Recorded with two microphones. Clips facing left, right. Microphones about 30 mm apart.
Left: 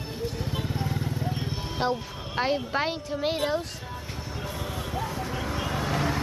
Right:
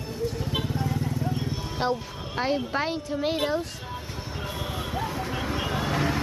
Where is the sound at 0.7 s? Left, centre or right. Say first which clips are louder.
Right 2 dB; centre.